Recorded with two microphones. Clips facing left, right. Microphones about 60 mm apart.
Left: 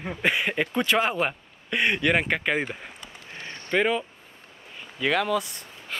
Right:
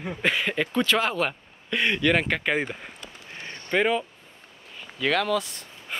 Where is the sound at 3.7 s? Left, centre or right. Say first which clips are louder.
Even; centre.